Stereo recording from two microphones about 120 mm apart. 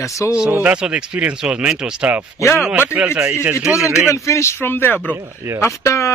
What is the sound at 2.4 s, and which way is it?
Speech, 20° left (ahead or behind).